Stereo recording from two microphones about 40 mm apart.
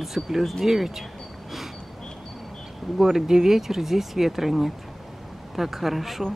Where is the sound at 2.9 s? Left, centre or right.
Centre.